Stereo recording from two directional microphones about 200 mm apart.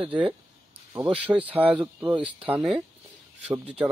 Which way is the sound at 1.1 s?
10° right (ahead or behind).